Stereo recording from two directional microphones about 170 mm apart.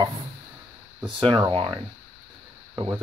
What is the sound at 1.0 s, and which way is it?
Speech, 30° right (ahead or behind).